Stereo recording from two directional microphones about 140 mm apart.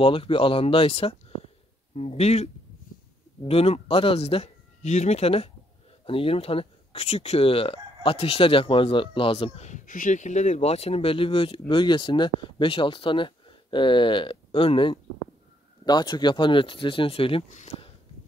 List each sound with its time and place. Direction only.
0.0 s speech: 40° left (ahead or behind)
17.5 s speech: 60° left (ahead or behind)